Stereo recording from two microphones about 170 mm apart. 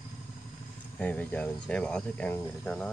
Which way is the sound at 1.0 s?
10° left (ahead or behind).